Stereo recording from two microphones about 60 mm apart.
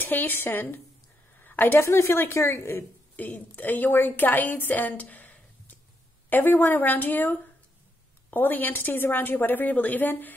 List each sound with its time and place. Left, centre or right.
0.0 s a woman's voice: left
1.4 s a sound: left
1.8 s a woman's voice: left
3.2 s a woman's voice: left
5.1 s a sound: left
6.3 s a woman's voice: left